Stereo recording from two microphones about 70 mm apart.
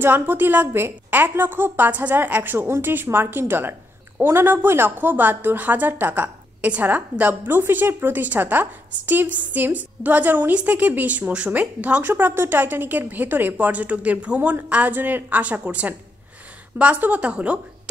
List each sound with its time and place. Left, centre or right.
0.0 s a woman's voice: right